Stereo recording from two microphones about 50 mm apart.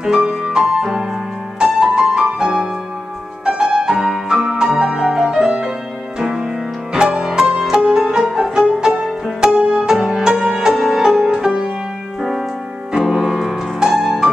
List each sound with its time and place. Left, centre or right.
0.0 s music: centre
9.6 s music: right
12.2 s keyboard: centre
12.9 s music: centre